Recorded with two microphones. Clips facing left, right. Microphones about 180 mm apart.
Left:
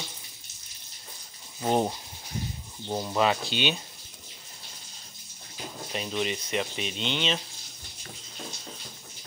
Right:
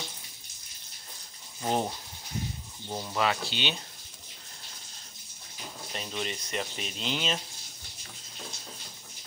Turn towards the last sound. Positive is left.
turn(degrees=-5)  # may be behind; listen again after turning